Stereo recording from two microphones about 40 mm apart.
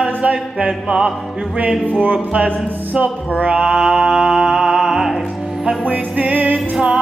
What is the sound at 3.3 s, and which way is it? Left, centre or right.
Music, right.